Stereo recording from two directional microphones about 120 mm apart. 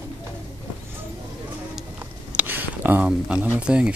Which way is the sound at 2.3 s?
15° right (ahead or behind).